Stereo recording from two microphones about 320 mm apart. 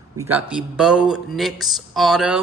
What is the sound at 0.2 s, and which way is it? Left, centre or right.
A man's voice, centre.